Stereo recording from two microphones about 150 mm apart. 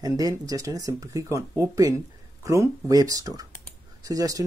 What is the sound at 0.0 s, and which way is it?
Speech, 25° right (ahead or behind).